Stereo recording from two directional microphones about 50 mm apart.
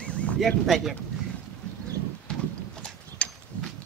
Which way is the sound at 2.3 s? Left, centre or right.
Centre.